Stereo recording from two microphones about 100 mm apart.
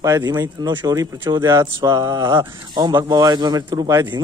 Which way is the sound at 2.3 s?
50° right (ahead or behind).